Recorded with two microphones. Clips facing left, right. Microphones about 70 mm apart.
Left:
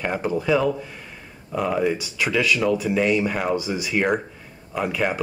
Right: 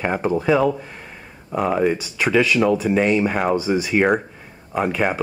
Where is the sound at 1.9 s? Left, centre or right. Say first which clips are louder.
Right 3 dB; centre.